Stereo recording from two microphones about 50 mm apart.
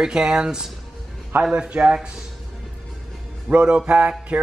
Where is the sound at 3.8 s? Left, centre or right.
Right.